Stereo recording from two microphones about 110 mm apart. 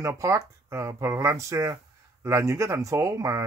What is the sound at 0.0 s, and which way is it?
Speech, 30° right (ahead or behind).